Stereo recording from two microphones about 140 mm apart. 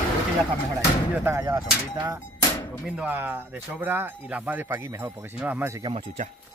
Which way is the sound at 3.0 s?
15° right (ahead or behind).